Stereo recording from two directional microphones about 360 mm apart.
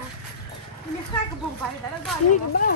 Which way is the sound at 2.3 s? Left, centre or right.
Left.